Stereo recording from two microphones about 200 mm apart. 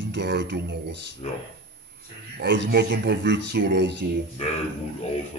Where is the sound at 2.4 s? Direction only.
60° right (ahead or behind).